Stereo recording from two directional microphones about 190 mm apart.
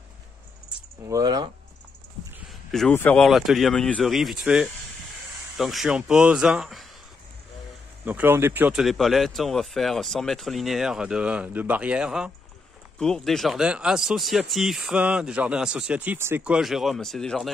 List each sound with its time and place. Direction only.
1.0 s speech: 20° right (ahead or behind)
2.7 s speech: 5° left (ahead or behind)
8.0 s speech: 10° right (ahead or behind)